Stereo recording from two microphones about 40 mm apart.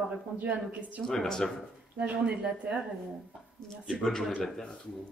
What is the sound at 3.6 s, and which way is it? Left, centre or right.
Speech, centre.